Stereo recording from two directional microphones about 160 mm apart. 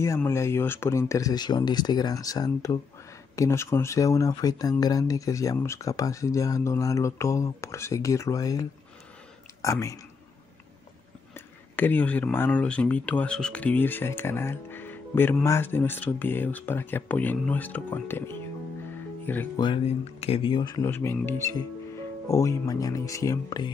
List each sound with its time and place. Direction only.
0.0 s speech: 15° left (ahead or behind)
11.3 s speech: 10° left (ahead or behind)
19.6 s speech: 35° left (ahead or behind)
20.9 s speech: 15° left (ahead or behind)